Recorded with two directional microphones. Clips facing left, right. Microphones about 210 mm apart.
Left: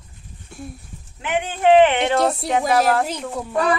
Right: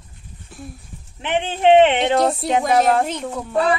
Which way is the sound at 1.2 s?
25° right (ahead or behind).